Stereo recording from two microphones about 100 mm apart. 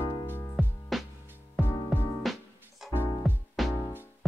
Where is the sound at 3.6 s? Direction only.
Centre (ahead or behind).